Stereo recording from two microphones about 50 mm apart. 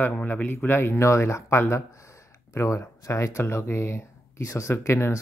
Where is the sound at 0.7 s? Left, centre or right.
Left.